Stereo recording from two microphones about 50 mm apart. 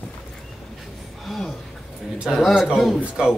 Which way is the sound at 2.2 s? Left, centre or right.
Centre.